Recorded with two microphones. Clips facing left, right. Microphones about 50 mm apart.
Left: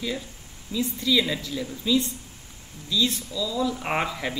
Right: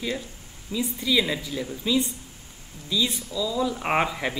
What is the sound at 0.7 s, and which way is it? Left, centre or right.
Speech, centre.